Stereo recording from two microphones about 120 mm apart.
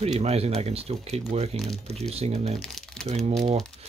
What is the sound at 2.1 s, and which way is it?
Speech, 60° right (ahead or behind).